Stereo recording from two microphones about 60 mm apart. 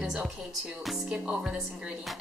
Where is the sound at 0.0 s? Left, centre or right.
Centre.